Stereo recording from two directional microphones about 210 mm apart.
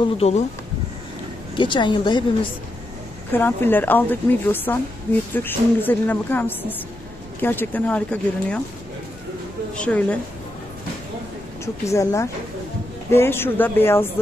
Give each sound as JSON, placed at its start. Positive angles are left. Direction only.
{"t": 0.2, "sound": "a woman's voice", "side_deg": 30}
{"t": 1.6, "sound": "a woman's voice", "side_deg": 20}
{"t": 3.3, "sound": "speech", "side_deg": 10}
{"t": 9.8, "sound": "a woman's voice", "side_deg": 5}
{"t": 11.6, "sound": "speech", "side_deg": 15}